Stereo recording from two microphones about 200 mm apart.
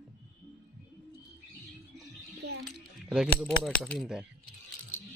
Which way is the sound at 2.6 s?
Centre (ahead or behind).